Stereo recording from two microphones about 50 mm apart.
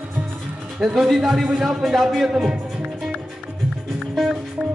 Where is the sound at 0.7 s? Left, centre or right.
Centre.